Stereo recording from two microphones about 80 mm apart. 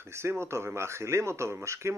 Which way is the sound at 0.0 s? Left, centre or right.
Right.